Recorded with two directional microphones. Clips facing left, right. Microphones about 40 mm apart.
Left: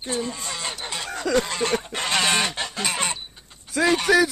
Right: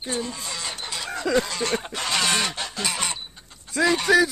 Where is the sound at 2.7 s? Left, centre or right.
Left.